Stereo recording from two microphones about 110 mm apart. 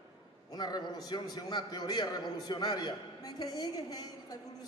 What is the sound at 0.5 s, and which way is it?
A man's voice, 40° left (ahead or behind).